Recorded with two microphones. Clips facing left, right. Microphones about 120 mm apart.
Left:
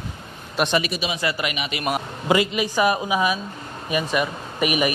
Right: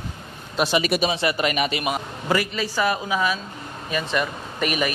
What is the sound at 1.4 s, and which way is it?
Speech, 45° right (ahead or behind).